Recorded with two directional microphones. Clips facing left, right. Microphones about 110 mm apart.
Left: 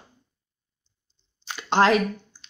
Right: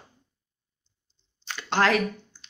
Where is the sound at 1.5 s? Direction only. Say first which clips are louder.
Left 4 dB; 20° left (ahead or behind).